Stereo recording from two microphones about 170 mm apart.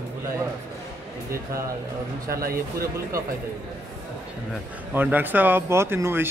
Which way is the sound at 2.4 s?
60° right (ahead or behind).